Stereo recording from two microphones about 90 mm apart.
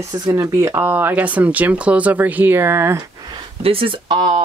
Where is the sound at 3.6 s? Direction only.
90° right; by 4.4 s 60° right (ahead or behind).